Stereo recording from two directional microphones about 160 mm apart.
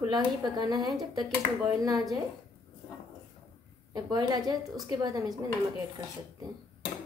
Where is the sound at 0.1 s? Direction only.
25° right (ahead or behind).